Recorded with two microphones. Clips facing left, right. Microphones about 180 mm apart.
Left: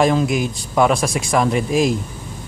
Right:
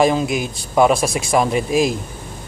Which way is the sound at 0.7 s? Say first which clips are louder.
Right 2 dB; 5° right (ahead or behind).